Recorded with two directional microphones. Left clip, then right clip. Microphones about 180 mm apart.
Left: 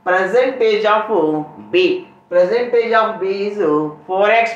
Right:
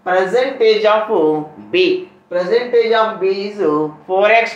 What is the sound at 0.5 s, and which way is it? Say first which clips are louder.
Speech: right 2 dB; 15° right (ahead or behind).